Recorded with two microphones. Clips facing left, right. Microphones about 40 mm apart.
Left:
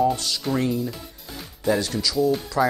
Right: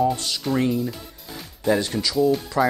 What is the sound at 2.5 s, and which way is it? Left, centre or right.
Speech, centre.